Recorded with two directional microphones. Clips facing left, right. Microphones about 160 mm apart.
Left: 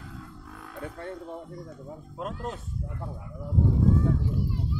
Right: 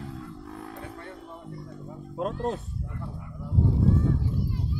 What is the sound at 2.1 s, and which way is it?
Speech, 35° right (ahead or behind).